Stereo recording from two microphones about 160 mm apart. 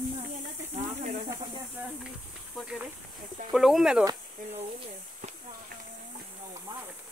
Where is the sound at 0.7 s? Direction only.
45° right (ahead or behind).